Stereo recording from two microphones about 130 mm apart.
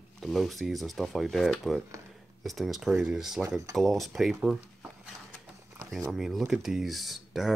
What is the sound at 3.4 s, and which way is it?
Speech, 25° right (ahead or behind).